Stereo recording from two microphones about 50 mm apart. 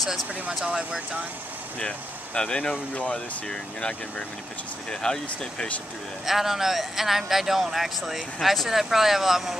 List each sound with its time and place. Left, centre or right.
0.5 s speech: centre
1.8 s speech: centre
6.2 s speech: centre